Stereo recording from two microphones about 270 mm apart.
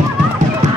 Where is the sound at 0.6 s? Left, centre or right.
Right.